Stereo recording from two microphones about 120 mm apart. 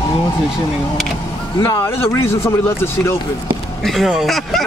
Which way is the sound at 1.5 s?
40° left (ahead or behind).